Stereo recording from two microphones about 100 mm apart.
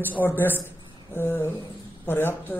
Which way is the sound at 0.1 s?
20° left (ahead or behind).